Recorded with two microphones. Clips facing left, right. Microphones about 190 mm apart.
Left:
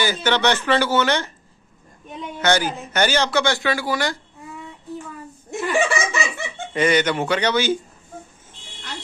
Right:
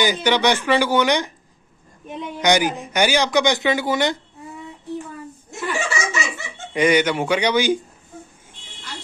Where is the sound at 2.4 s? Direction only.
15° right (ahead or behind).